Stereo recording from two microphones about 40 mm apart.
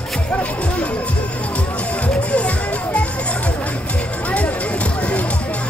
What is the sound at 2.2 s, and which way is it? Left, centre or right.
Music, left.